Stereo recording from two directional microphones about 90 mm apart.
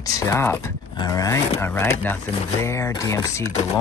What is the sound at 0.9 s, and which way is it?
Speech, 45° left (ahead or behind).